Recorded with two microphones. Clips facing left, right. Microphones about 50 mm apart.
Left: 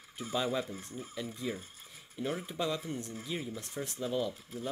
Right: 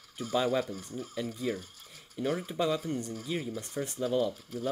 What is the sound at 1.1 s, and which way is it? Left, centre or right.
Speech, centre.